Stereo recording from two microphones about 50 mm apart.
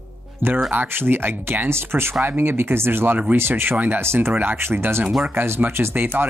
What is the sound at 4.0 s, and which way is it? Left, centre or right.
Speech, right.